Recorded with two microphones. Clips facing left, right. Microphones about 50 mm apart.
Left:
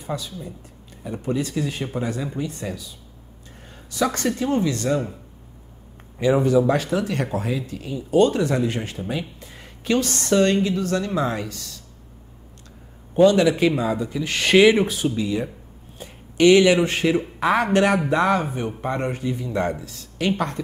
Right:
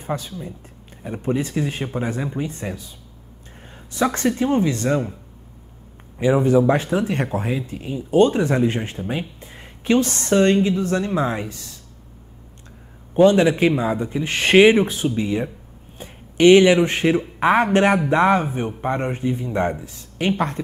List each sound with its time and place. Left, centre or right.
0.0 s a woman's voice: right
3.9 s a woman's voice: right
6.1 s a woman's voice: right
13.1 s a woman's voice: right